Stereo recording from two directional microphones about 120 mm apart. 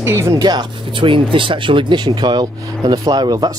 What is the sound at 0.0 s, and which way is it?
Speech, 20° right (ahead or behind).